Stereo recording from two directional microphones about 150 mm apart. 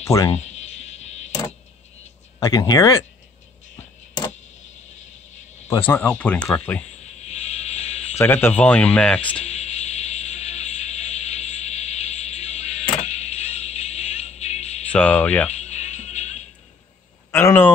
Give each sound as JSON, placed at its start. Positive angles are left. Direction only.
{"t": 0.0, "sound": "speech", "side_deg": 20}
{"t": 0.3, "sound": "a sound", "side_deg": 50}
{"t": 2.4, "sound": "speech", "side_deg": 25}
{"t": 5.9, "sound": "speech", "side_deg": 10}
{"t": 7.2, "sound": "music", "side_deg": 45}
{"t": 8.2, "sound": "speech", "side_deg": 15}
{"t": 9.4, "sound": "music", "side_deg": 45}
{"t": 14.9, "sound": "speech", "side_deg": 10}
{"t": 15.5, "sound": "music", "side_deg": 50}
{"t": 17.3, "sound": "speech", "side_deg": 15}